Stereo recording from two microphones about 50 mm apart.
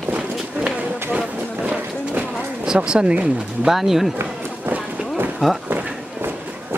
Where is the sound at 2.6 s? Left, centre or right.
Centre.